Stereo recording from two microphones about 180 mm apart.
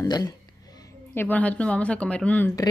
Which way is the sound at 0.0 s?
20° left (ahead or behind).